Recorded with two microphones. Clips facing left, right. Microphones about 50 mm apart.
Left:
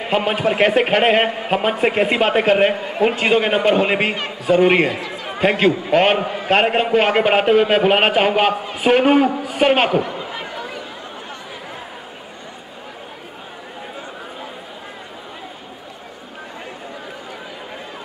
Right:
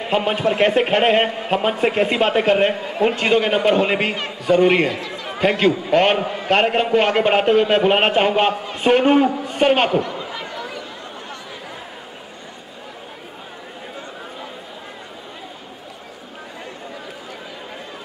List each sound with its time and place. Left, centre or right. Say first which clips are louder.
0.0 s a man's voice: left 1 dB; centre
5.3 s a man's voice: left 1 dB; centre
10.3 s a sound: left 1 dB; left